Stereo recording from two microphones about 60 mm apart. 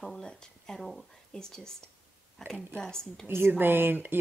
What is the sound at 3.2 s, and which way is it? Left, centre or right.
Speech, right.